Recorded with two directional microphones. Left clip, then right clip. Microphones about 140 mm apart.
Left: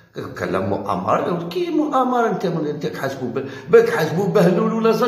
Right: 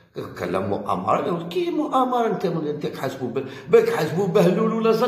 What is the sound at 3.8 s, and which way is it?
Speech, centre (ahead or behind).